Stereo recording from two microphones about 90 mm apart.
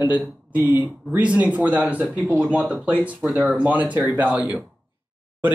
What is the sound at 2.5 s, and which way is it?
Speech, 5° right (ahead or behind).